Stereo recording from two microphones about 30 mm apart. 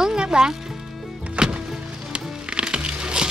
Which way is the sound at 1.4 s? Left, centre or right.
Right.